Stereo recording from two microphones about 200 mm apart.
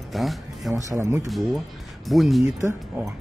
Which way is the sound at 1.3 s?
Centre (ahead or behind).